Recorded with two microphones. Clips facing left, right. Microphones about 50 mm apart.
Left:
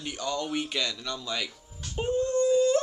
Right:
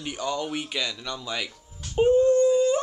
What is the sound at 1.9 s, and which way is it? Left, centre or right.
Dog, centre.